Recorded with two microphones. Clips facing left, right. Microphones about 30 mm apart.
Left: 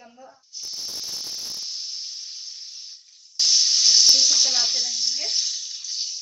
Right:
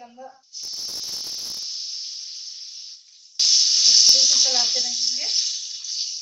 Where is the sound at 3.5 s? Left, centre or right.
Right.